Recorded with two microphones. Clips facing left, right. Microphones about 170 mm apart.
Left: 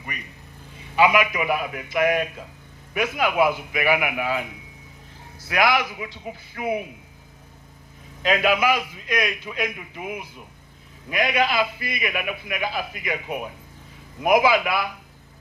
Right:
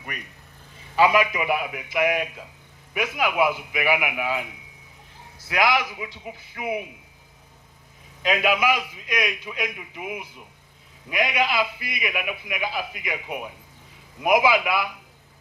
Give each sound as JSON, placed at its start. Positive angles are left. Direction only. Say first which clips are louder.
{"t": 0.9, "sound": "a man's voice", "louder": "even", "side_deg": -30}
{"t": 5.5, "sound": "a man's voice", "louder": "left 1 dB", "side_deg": -15}
{"t": 8.2, "sound": "a man's voice", "louder": "left 2 dB", "side_deg": -15}
{"t": 14.2, "sound": "a man's voice", "louder": "left 1 dB", "side_deg": -15}